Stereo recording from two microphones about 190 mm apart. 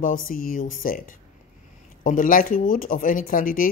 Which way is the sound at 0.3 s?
45° left (ahead or behind).